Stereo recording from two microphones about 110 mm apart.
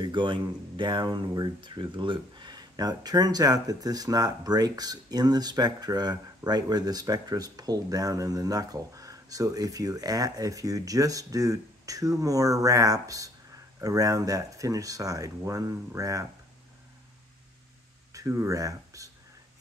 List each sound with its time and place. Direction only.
0.0 s speech: 45° right (ahead or behind)
18.1 s speech: 25° right (ahead or behind)